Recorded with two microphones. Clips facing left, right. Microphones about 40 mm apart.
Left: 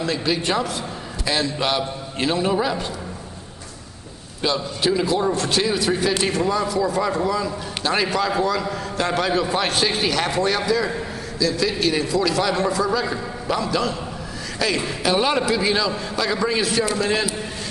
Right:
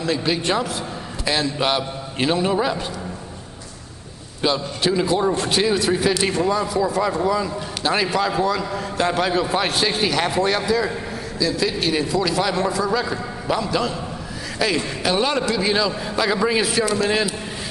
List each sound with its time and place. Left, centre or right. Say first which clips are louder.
0.0 s a man's voice: right 1 dB; centre
4.4 s a man's voice: right 1 dB; centre